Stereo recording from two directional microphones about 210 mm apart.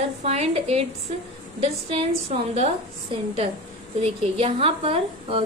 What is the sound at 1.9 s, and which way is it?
Speech, 30° right (ahead or behind).